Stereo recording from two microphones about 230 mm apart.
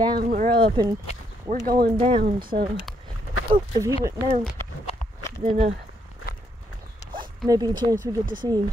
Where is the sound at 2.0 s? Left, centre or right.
Right.